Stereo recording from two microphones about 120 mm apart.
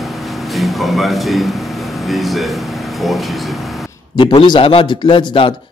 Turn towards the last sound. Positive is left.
turn(degrees=45)  # may be behind; listen again after turning